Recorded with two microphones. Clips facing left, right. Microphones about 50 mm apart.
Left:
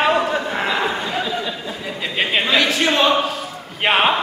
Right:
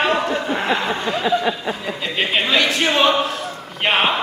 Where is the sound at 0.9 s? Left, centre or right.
Right.